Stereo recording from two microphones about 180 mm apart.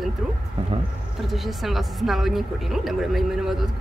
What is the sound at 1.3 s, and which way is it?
A woman's voice, centre (ahead or behind).